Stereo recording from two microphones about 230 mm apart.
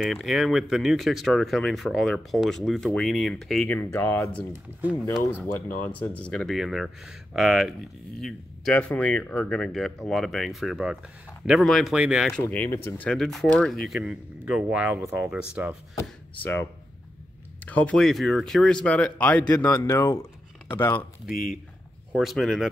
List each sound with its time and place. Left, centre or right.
0.0 s speech: centre
5.9 s speech: centre
15.9 s speech: centre
17.6 s speech: centre
21.3 s speech: left
22.1 s speech: centre